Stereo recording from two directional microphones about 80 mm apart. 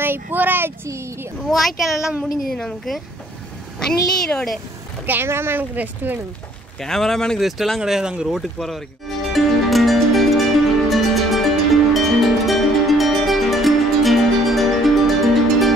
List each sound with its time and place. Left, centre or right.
0.0 s speech: right
0.8 s a child's voice: right
1.5 s a woman's voice: centre
5.0 s speech: right
6.8 s speech: centre
9.3 s music: centre